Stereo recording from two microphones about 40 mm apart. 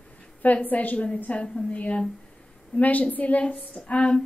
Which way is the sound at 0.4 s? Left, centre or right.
Left.